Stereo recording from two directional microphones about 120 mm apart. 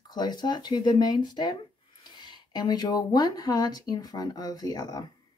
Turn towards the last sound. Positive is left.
turn(degrees=35)  # may be behind; listen again after turning